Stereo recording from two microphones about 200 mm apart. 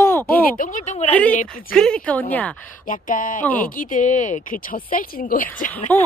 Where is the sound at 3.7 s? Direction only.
40° left (ahead or behind).